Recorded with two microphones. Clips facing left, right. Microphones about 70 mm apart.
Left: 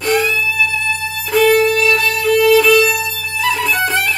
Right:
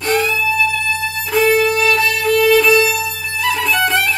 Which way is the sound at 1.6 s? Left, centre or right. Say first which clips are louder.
Left 1 dB; right.